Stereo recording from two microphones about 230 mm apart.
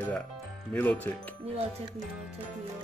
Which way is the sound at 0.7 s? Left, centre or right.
Centre.